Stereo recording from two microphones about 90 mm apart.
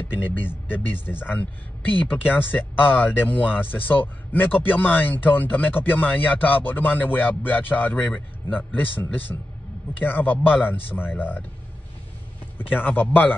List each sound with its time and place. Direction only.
0.1 s speech: 20° left (ahead or behind)
12.5 s speech: 20° left (ahead or behind)